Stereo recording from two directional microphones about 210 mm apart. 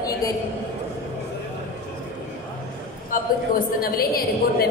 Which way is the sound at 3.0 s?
45° left (ahead or behind).